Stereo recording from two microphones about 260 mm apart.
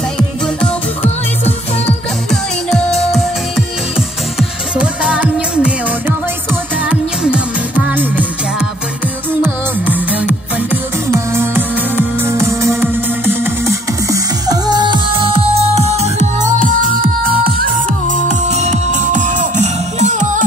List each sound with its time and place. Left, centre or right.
4.4 s music: centre; by 20.4 s right